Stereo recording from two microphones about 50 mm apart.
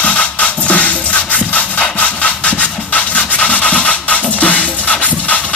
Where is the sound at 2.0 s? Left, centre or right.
Left.